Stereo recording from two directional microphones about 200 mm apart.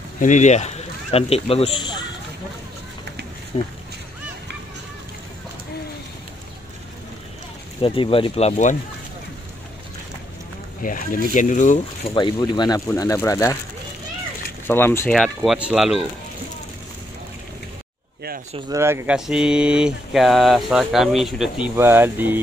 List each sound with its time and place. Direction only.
0.2 s speech: 35° left (ahead or behind); by 2.0 s 20° left (ahead or behind)
3.5 s speech: 25° left (ahead or behind)
7.8 s speech: 25° left (ahead or behind)
10.8 s speech: 40° left (ahead or behind)
12.1 s speech: 25° left (ahead or behind)
14.7 s speech: 10° left (ahead or behind)
15.1 s speech: centre (ahead or behind)
18.7 s speech: 15° right (ahead or behind)